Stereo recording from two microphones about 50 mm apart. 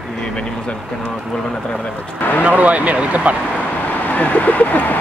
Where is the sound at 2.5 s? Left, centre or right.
Right.